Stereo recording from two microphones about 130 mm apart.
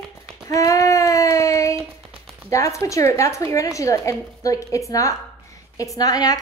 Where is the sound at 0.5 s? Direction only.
25° left (ahead or behind).